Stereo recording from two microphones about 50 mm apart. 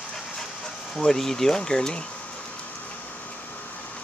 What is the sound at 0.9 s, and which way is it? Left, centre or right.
Speech, centre.